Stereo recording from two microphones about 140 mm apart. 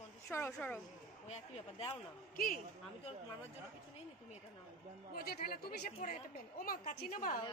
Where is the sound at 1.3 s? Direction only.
45° left (ahead or behind).